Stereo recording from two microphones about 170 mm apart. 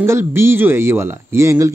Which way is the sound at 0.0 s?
15° right (ahead or behind).